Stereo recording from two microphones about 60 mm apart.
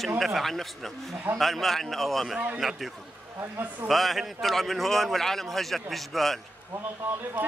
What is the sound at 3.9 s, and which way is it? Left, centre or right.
A man's voice, centre.